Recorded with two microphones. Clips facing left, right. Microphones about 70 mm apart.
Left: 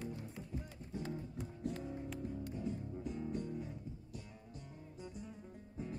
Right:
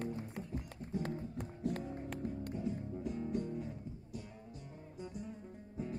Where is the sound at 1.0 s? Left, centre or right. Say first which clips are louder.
Right 3 dB; right.